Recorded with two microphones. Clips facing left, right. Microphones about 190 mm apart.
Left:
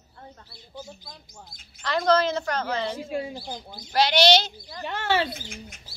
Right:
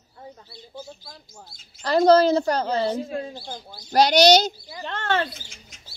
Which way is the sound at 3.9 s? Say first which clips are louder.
Right 4 dB; 40° right (ahead or behind).